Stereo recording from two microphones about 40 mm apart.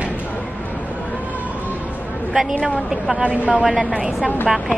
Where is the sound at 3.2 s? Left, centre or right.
Right.